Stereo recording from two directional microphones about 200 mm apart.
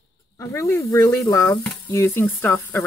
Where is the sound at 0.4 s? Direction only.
15° left (ahead or behind).